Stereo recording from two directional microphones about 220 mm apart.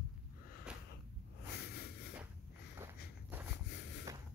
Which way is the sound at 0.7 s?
5° right (ahead or behind).